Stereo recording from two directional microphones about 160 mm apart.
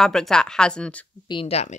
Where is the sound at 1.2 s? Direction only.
35° left (ahead or behind).